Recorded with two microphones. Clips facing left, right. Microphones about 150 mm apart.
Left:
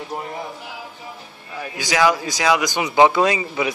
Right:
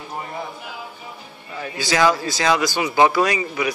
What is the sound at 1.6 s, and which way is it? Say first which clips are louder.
Speech: even; 10° left (ahead or behind).